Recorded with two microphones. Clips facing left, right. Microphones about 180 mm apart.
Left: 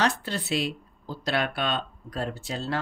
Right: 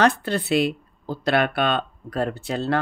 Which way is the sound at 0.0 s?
55° right (ahead or behind).